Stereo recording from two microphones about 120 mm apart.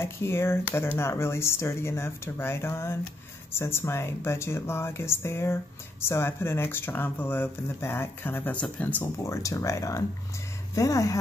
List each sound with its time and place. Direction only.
0.0 s speech: 20° left (ahead or behind)
9.2 s speech: 25° left (ahead or behind)